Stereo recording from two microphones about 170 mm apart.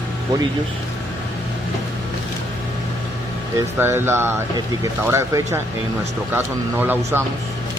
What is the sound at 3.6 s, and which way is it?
A man's voice, 15° right (ahead or behind).